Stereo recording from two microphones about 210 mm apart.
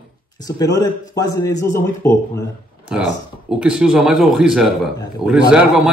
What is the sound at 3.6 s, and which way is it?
A man's voice, 5° right (ahead or behind).